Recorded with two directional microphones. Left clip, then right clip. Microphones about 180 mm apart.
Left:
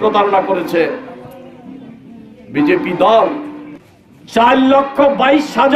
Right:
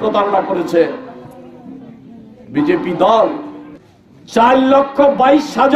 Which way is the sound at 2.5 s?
10° right (ahead or behind).